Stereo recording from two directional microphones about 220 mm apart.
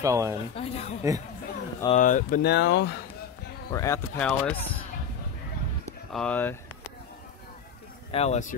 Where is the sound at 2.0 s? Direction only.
35° left (ahead or behind).